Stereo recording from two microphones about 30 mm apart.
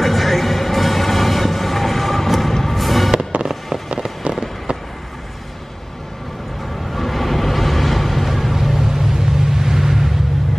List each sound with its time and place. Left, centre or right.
0.0 s music: centre
3.3 s fireworks: right
4.3 s fireworks: centre
6.9 s music: centre